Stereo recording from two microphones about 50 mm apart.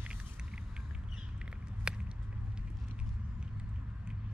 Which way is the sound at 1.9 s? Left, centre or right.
Centre.